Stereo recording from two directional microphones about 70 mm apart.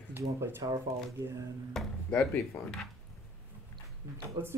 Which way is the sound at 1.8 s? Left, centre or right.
Centre.